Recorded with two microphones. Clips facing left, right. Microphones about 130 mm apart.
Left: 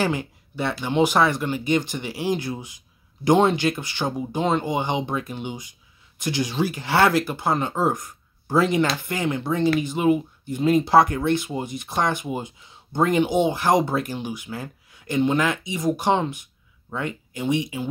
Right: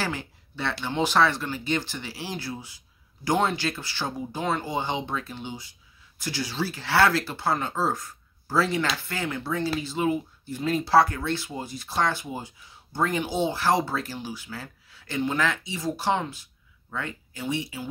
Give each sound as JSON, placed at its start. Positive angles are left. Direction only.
{"t": 0.0, "sound": "speech", "side_deg": 15}